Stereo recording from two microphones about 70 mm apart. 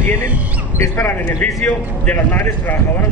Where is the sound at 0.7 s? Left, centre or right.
Left.